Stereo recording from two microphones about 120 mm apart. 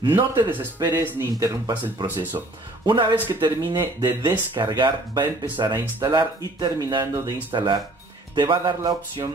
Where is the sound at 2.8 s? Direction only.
45° right (ahead or behind).